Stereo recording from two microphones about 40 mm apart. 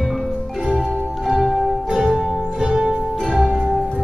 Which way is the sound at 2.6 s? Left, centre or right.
Centre.